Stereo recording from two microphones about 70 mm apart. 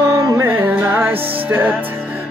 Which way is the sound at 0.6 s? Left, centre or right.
Right.